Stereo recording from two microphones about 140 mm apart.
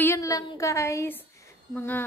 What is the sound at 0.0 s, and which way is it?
Speech, 20° left (ahead or behind).